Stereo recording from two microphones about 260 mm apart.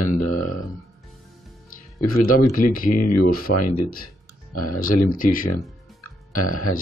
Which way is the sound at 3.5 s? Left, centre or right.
Left.